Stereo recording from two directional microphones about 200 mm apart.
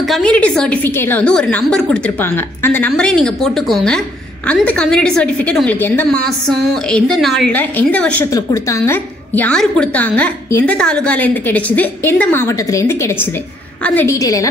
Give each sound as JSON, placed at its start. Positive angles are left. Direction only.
{"t": 0.0, "sound": "a woman's voice", "side_deg": 5}